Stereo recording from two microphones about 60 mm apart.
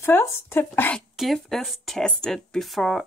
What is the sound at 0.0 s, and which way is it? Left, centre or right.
Speech, left.